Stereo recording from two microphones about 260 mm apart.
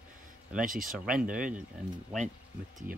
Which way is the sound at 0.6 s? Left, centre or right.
Right.